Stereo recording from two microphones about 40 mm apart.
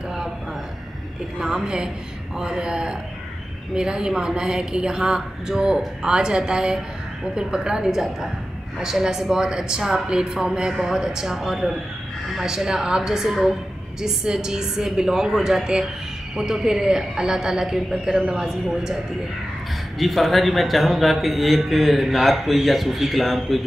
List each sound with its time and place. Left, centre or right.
1.4 s a man's voice: centre
20.0 s a man's voice: centre